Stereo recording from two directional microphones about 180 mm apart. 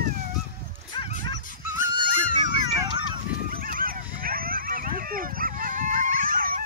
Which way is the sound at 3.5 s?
55° right (ahead or behind).